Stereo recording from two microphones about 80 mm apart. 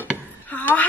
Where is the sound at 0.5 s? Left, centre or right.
Centre.